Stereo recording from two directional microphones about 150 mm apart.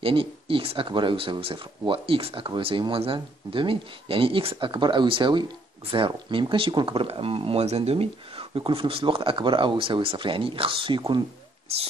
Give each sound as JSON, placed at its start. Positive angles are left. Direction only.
{"t": 0.0, "sound": "speech", "side_deg": -35}